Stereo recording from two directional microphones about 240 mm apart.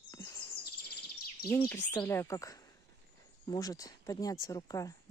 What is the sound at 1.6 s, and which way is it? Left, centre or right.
Speech, centre.